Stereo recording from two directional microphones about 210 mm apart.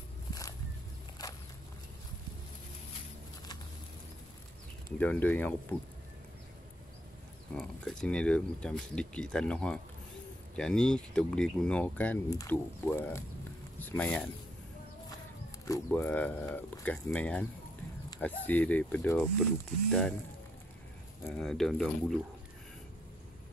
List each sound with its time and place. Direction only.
0.3 s walk: 15° left (ahead or behind)
1.2 s a sound: 15° left (ahead or behind)
4.9 s speech: 10° left (ahead or behind)
7.5 s speech: 5° left (ahead or behind)
15.6 s speech: 10° left (ahead or behind)
21.2 s speech: 5° left (ahead or behind)